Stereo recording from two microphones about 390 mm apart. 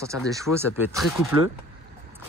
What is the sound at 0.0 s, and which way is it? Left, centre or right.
Speech, centre.